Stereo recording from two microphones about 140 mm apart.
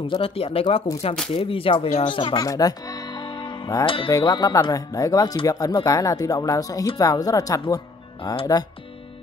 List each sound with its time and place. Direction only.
0.0 s speech: 40° left (ahead or behind)
2.4 s music: 25° left (ahead or behind)
3.8 s speech: 40° left (ahead or behind)